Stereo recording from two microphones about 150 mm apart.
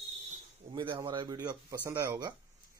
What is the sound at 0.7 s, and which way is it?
Speech, 35° right (ahead or behind).